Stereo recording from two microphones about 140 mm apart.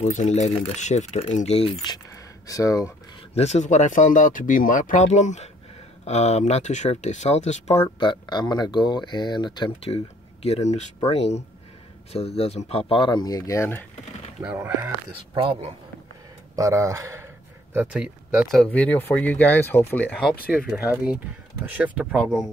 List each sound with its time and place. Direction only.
0.0 s speech: 55° left (ahead or behind)
1.8 s a sound: 30° left (ahead or behind)
3.3 s speech: 55° left (ahead or behind)
8.0 s speech: 30° left (ahead or behind)
9.8 s speech: 45° left (ahead or behind); by 13.8 s 20° left (ahead or behind)
14.4 s speech: 10° right (ahead or behind)
15.3 s speech: 40° right (ahead or behind)
16.5 s speech: 20° right (ahead or behind)
17.7 s speech: 5° right (ahead or behind)
18.6 s speech: 10° left (ahead or behind)
20.1 s speech: centre (ahead or behind)
21.6 s speech: 10° right (ahead or behind)